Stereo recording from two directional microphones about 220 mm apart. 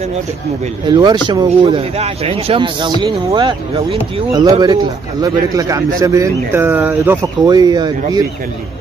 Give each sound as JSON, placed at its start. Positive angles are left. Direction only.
{"t": 0.8, "sound": "speech", "side_deg": -20}